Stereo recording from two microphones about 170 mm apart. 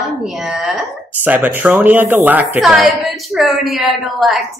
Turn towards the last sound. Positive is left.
turn(degrees=0)  # may be behind; listen again after turning